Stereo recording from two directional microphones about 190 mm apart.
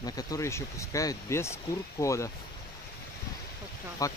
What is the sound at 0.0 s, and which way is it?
Speech, 20° left (ahead or behind).